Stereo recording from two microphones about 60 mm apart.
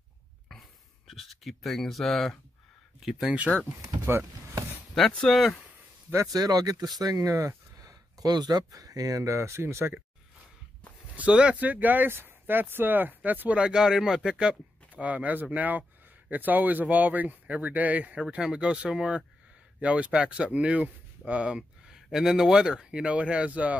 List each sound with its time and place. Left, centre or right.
0.5 s a sound: centre
3.3 s speech: right
3.6 s speech: right
4.0 s speech: right
4.9 s speech: centre
6.3 s speech: right
11.1 s speech: centre
11.7 s speech: right
13.6 s speech: centre